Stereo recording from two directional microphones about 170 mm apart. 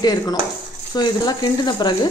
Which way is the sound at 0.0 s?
20° left (ahead or behind).